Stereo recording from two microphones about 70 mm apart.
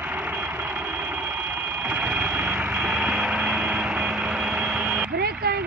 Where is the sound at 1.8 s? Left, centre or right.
Right.